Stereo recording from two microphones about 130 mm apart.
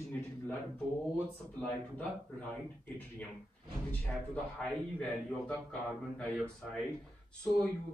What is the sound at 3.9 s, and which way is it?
Speech, 10° left (ahead or behind).